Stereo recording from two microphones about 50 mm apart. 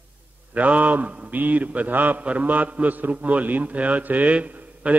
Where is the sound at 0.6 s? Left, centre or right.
Right.